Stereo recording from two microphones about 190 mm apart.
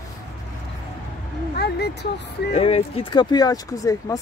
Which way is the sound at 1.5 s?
60° left (ahead or behind).